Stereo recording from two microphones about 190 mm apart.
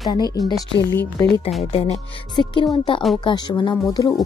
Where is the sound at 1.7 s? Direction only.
30° left (ahead or behind).